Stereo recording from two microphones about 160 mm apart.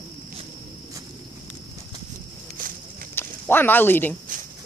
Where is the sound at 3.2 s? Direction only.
15° left (ahead or behind).